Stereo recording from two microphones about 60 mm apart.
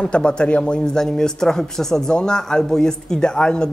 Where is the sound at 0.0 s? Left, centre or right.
Centre.